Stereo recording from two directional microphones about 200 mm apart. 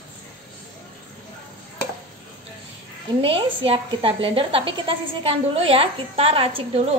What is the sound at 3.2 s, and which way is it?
A woman's voice, 30° right (ahead or behind).